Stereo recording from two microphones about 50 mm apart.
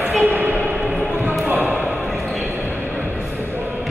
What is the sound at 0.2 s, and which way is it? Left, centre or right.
Music, right.